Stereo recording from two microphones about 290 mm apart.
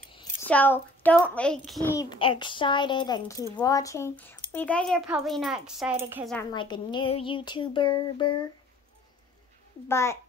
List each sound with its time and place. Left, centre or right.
0.5 s a child's voice: centre
6.3 s a child's voice: centre
9.8 s a child's voice: centre